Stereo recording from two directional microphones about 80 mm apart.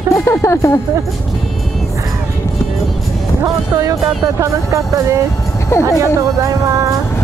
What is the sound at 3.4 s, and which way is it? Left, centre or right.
Speech, right.